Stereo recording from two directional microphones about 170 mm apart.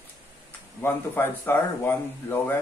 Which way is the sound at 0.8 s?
10° left (ahead or behind).